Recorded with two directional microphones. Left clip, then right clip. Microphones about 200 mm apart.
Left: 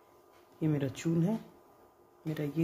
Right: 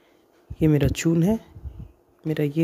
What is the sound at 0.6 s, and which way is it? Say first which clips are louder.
Speech: right 12 dB; 50° right (ahead or behind).